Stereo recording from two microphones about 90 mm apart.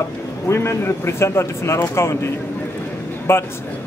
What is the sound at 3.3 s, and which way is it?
Speech, 30° left (ahead or behind).